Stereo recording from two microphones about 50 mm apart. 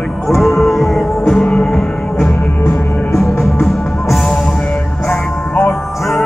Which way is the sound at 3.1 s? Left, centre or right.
Left.